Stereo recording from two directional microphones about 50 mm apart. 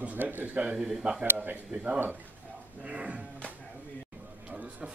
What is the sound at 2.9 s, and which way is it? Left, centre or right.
Speech, right.